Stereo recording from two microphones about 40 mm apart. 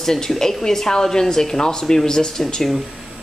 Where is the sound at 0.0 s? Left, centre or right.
Centre.